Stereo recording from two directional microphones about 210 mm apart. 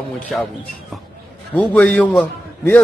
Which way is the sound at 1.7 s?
5° left (ahead or behind).